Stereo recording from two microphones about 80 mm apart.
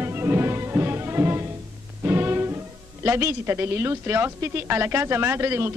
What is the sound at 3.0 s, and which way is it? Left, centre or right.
A woman's voice, right.